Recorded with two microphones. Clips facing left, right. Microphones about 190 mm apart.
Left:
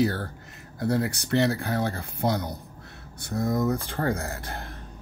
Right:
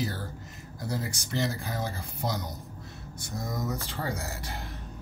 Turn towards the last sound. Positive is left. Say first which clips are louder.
# left 3 dB
turn(degrees=55)  # may be behind; listen again after turning